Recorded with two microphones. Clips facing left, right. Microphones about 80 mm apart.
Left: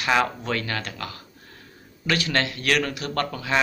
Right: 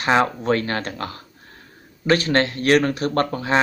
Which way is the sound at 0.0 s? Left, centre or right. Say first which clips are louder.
Right 4 dB; right.